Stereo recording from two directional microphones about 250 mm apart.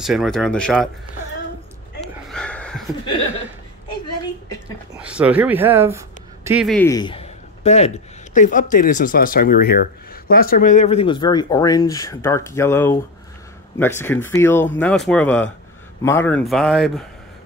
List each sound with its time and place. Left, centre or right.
0.0 s speech: centre
2.3 s a sound: centre
4.9 s speech: centre